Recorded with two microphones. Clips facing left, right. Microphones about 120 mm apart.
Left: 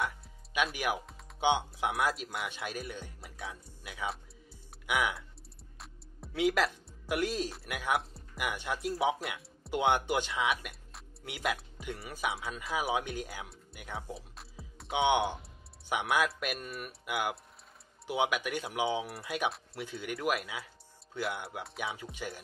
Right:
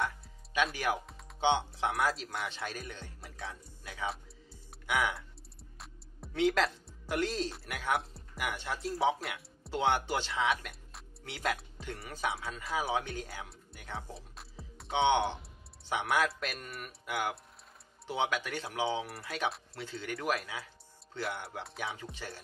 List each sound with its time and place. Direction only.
0.2 s music: 5° left (ahead or behind)
1.4 s speech: 10° left (ahead or behind)
5.8 s music: 5° left (ahead or behind)
7.9 s speech: centre (ahead or behind)
8.4 s speech: 15° left (ahead or behind)
10.7 s music: centre (ahead or behind)
11.2 s speech: 15° left (ahead or behind)
14.1 s music: centre (ahead or behind)
15.9 s speech: 15° left (ahead or behind)